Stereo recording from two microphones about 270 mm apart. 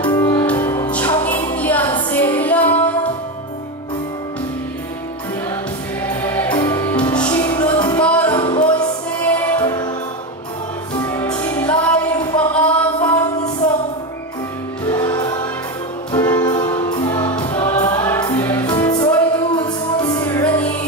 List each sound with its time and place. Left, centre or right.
0.0 s music: centre
6.0 s music: centre
8.0 s music: centre
8.4 s music: centre
9.2 s music: centre
11.0 s music: centre
14.9 s music: centre